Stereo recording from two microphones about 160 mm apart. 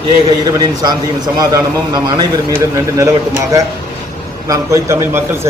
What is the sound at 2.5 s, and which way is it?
A man's voice, 15° right (ahead or behind).